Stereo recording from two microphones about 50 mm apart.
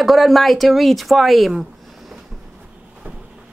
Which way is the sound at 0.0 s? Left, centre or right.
Centre.